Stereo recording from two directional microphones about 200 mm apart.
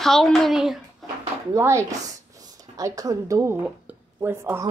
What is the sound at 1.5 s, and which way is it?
Speech, 15° right (ahead or behind).